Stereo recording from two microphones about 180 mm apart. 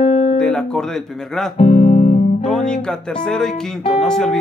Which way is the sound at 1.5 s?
40° left (ahead or behind).